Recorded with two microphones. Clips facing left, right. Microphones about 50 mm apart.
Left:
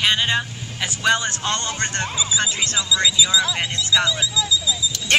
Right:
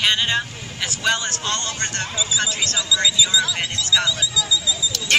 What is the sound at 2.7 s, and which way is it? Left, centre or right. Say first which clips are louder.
Speech: left 1 dB; centre.